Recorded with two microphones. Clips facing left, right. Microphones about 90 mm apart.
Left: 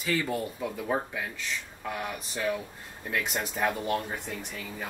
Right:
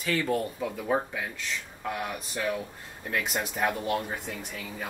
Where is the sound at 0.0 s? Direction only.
5° left (ahead or behind).